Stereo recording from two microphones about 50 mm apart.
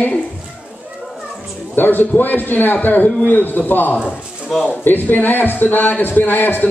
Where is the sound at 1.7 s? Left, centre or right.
Left.